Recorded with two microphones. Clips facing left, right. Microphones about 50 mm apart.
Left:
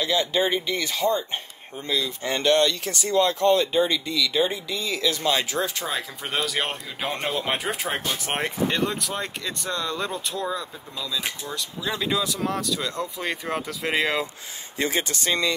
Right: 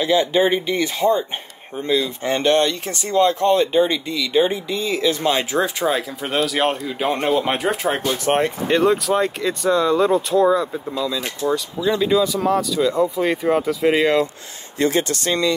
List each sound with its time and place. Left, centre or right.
0.0 s speech: right
5.9 s speech: centre
11.5 s speech: centre
14.8 s speech: centre